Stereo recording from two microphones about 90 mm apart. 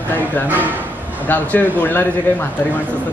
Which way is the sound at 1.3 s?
20° left (ahead or behind).